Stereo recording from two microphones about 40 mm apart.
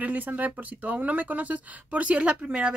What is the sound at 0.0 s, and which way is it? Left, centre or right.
Speech, right.